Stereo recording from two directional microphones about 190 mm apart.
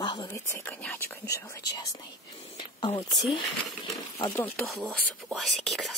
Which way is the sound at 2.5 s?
25° left (ahead or behind).